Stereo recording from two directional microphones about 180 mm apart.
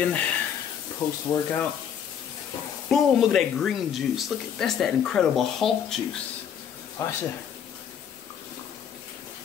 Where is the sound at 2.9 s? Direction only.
Centre (ahead or behind).